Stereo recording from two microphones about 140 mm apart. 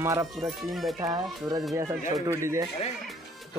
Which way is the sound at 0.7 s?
Centre (ahead or behind).